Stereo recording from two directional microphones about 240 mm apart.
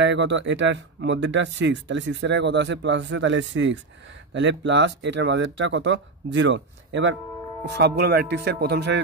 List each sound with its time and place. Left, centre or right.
0.0 s speech: right